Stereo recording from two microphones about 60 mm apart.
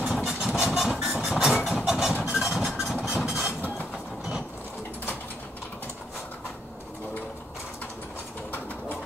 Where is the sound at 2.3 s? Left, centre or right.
Centre.